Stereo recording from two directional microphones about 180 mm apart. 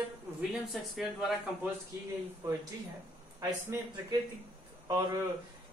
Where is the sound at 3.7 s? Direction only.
15° right (ahead or behind).